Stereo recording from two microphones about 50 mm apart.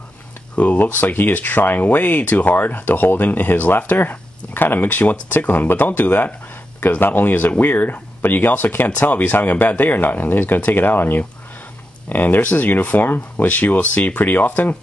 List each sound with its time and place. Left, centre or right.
0.6 s speech: left